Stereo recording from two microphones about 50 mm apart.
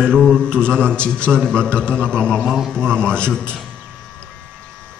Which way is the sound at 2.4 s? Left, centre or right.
Centre.